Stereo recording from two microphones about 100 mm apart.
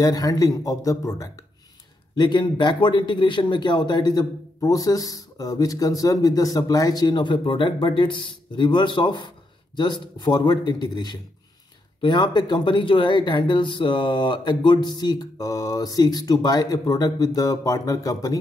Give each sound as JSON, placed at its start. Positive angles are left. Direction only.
{"t": 0.0, "sound": "speech", "side_deg": 40}
{"t": 2.1, "sound": "speech", "side_deg": 50}